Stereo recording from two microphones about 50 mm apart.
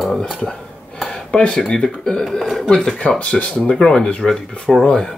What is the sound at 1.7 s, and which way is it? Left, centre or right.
Speech, centre.